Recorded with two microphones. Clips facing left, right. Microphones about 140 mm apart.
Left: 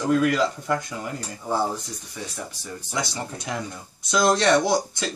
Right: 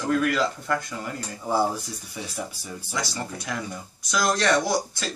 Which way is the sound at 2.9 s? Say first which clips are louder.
Left 2 dB; 20° left (ahead or behind).